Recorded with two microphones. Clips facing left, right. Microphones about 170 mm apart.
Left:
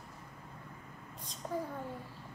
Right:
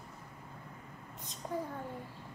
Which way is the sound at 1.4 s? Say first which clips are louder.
Even; 5° right (ahead or behind).